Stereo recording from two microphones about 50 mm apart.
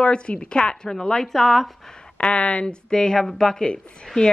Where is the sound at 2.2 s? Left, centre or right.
Left.